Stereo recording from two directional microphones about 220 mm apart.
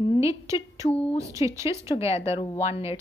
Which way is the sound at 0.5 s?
15° right (ahead or behind).